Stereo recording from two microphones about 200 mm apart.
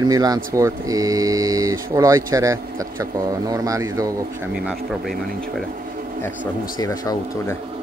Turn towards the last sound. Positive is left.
turn(degrees=15)  # may be behind; listen again after turning